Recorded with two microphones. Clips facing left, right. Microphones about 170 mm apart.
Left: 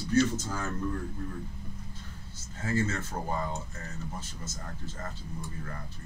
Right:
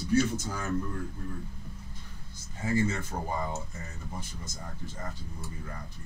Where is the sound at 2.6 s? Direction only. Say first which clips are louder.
Right 2 dB; 15° right (ahead or behind).